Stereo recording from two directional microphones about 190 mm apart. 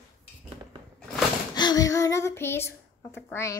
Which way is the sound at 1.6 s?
20° left (ahead or behind).